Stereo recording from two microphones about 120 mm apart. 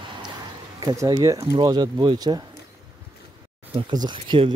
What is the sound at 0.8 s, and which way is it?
Speech, 30° right (ahead or behind).